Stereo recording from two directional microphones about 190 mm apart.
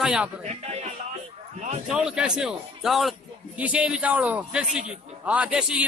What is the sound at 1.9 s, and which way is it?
Speech, 5° right (ahead or behind).